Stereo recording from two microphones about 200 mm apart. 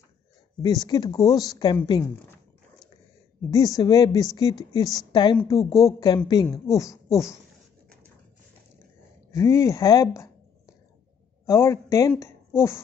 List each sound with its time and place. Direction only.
0.6 s speech: 20° left (ahead or behind)
3.4 s speech: 15° left (ahead or behind)
5.6 s speech: centre (ahead or behind)
5.9 s speech: 20° left (ahead or behind)
9.3 s speech: 15° left (ahead or behind)
11.4 s speech: 15° left (ahead or behind)